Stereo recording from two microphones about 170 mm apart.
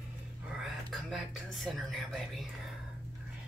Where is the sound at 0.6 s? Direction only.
Centre (ahead or behind).